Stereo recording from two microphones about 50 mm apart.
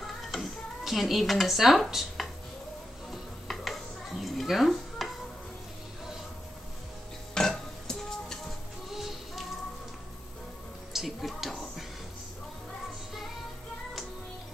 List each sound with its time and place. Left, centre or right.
0.0 s music: centre
7.3 s music: centre
8.9 s music: centre
10.9 s music: centre